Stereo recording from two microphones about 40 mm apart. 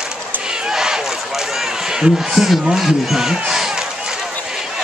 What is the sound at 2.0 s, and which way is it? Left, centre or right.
A man's voice, centre.